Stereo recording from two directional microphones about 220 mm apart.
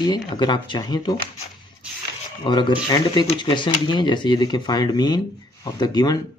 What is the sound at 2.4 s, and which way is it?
Speech, 20° left (ahead or behind).